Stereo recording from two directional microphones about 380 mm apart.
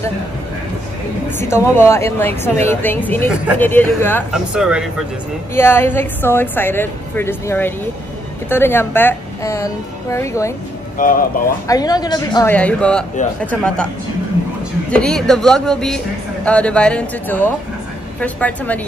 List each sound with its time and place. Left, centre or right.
1.4 s speech: centre
11.0 s speech: left
11.6 s speech: centre
14.9 s speech: centre